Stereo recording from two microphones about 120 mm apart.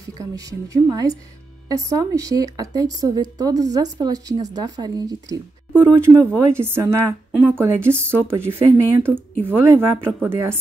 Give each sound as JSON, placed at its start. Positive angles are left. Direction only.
{"t": 0.2, "sound": "a woman's voice", "side_deg": -30}
{"t": 5.9, "sound": "speech", "side_deg": -20}